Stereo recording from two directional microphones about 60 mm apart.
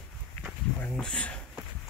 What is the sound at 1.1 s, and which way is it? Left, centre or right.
Speech, left.